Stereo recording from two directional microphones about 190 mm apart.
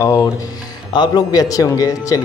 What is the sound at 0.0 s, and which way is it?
Speech, 20° left (ahead or behind).